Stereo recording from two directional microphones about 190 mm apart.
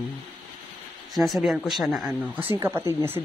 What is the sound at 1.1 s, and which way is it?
A man's voice, centre (ahead or behind).